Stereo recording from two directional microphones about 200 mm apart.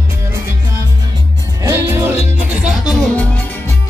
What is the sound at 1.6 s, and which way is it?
Music, 10° right (ahead or behind).